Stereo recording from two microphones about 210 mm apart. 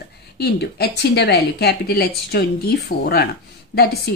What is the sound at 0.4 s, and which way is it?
Speech, 50° left (ahead or behind).